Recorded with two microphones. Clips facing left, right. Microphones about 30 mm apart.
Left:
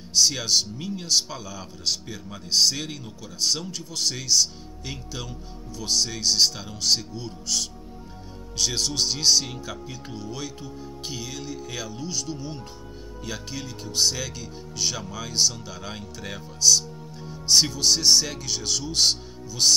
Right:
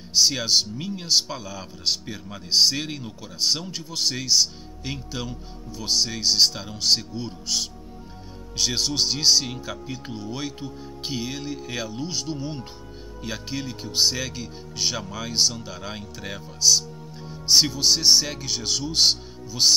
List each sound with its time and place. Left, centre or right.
0.1 s speech: centre